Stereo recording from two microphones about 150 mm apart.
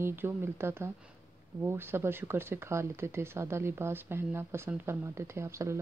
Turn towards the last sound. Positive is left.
turn(degrees=-20)  # may be behind; listen again after turning